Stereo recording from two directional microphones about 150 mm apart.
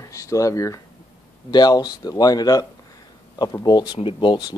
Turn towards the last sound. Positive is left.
turn(degrees=30)  # may be behind; listen again after turning